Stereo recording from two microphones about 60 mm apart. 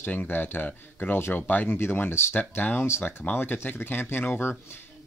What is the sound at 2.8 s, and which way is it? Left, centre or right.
Speech, left.